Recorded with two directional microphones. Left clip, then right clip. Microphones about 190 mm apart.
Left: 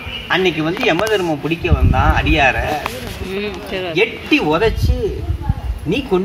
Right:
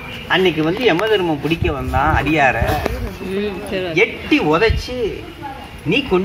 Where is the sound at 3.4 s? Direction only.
30° right (ahead or behind).